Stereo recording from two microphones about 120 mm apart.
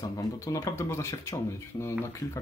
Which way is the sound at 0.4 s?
25° left (ahead or behind).